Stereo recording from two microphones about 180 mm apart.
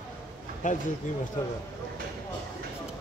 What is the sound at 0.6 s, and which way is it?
Speech, 45° left (ahead or behind).